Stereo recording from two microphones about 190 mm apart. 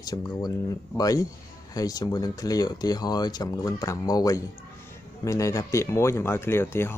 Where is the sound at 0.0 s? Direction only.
20° left (ahead or behind).